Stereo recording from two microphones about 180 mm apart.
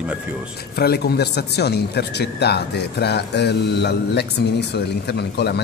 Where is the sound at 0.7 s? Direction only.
60° left (ahead or behind).